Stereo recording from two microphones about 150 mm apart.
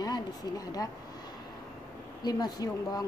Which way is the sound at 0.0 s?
25° left (ahead or behind).